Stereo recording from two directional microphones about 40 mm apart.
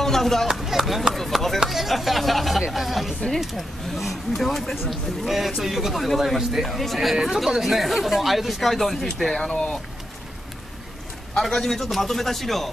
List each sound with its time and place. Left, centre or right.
0.0 s chop: centre
0.5 s speech: centre
9.4 s a man's voice: centre
11.3 s a man's voice: centre